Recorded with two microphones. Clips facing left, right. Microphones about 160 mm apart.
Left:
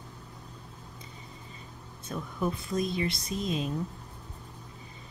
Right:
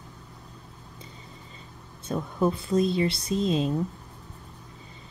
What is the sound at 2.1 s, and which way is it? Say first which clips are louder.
Speech: right 6 dB; 30° right (ahead or behind).